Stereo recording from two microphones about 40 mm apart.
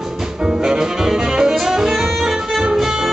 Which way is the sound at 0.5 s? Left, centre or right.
Centre.